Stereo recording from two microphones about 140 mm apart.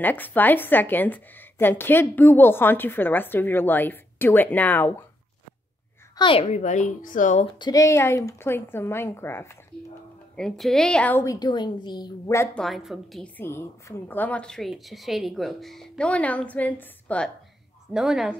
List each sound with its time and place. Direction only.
0.0 s a woman's voice: 15° left (ahead or behind)
6.1 s speech: 40° left (ahead or behind); by 7.4 s 65° left (ahead or behind)
7.5 s a woman's voice: 30° left (ahead or behind)
10.3 s a woman's voice: 5° left (ahead or behind)
11.2 s a woman's voice: 30° left (ahead or behind)
12.5 s a woman's voice: centre (ahead or behind)
13.2 s a woman's voice: 15° left (ahead or behind)
17.9 s a woman's voice: 5° right (ahead or behind)